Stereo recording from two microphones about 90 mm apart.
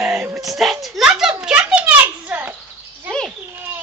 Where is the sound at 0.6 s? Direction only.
Centre (ahead or behind); by 2.5 s 20° right (ahead or behind).